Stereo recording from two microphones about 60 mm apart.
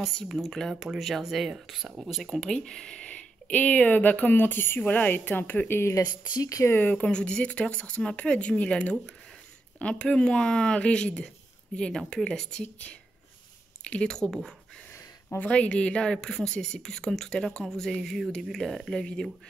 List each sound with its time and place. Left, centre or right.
0.0 s speech: centre
2.2 s speech: centre; by 5.9 s left
5.9 s speech: left
6.8 s speech: left
7.1 s a woman's voice: centre
12.6 s speech: left
15.2 s a woman's voice: left; by 19.2 s centre